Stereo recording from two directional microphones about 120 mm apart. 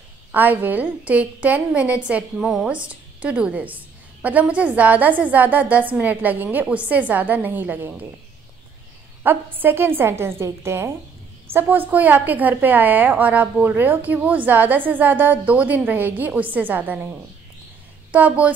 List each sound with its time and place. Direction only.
0.3 s a woman's voice: 15° right (ahead or behind)
9.2 s a woman's voice: 15° right (ahead or behind)
18.1 s a woman's voice: 10° right (ahead or behind)